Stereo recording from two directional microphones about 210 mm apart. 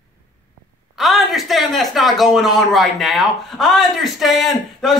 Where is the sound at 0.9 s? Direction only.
Centre (ahead or behind).